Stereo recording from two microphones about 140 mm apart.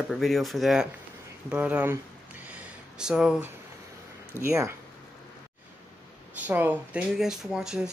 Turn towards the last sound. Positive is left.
turn(degrees=-5)  # may be behind; listen again after turning